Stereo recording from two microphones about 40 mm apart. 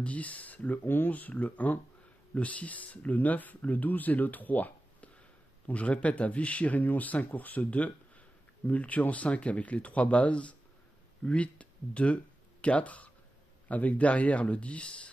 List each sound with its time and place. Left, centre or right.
0.0 s speech: left
0.8 s speech: left
5.7 s speech: left